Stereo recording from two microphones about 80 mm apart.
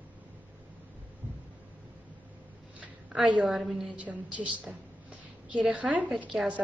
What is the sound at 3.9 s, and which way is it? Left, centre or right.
A woman's voice, centre.